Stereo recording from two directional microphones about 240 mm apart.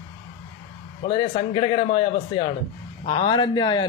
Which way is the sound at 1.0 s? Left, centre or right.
Left.